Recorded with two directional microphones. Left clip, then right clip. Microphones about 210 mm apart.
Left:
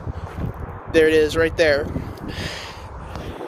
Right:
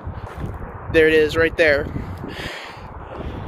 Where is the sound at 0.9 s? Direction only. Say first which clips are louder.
Right 1 dB; centre (ahead or behind).